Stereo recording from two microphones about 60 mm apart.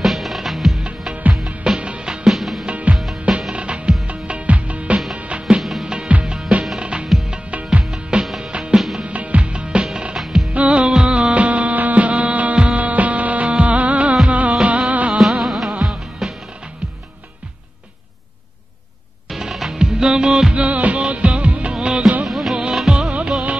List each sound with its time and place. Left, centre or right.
0.0 s music: centre
0.8 s music: right
2.2 s music: centre
2.6 s music: right
5.6 s music: centre
5.9 s music: centre
7.9 s music: centre
10.5 s music: right
15.4 s music: centre
19.2 s music: centre
20.6 s music: right; by 22.6 s centre
22.6 s music of bollywood: centre